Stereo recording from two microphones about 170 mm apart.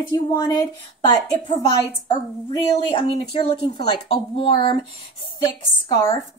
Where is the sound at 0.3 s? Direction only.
20° left (ahead or behind).